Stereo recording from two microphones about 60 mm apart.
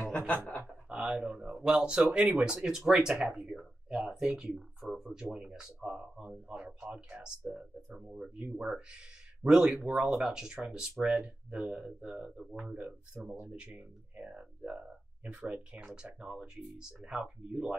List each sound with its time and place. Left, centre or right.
0.3 s speech: left
0.8 s speech: centre
4.9 s a sound: centre
5.3 s speech: centre
8.5 s speech: centre